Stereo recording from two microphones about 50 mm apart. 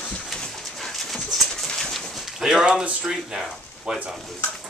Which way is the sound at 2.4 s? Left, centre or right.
Centre.